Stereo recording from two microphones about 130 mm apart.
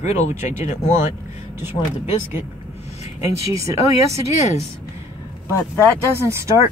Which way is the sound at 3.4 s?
25° right (ahead or behind).